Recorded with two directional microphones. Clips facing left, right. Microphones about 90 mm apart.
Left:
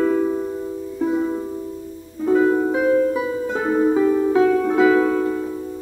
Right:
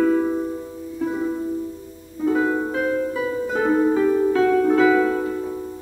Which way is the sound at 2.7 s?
15° left (ahead or behind).